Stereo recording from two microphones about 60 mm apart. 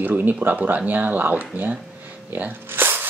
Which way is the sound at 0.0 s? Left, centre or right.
Right.